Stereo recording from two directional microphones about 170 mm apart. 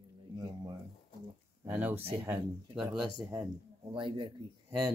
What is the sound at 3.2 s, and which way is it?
Speech, 15° right (ahead or behind).